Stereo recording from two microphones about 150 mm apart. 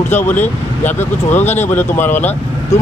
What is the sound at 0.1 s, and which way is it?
Speech, 15° left (ahead or behind).